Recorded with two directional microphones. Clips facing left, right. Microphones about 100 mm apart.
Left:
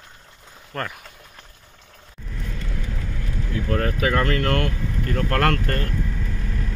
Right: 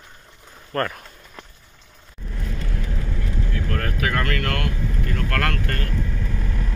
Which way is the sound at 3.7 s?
30° left (ahead or behind).